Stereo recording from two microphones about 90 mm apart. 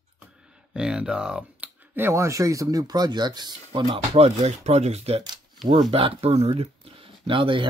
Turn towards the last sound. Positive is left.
turn(degrees=-70)  # may be behind; listen again after turning